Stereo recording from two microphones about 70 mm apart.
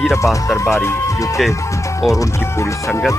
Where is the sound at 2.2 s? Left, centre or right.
Left.